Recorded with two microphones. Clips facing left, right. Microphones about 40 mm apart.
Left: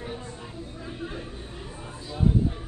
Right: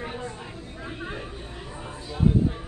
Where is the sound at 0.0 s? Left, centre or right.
Right.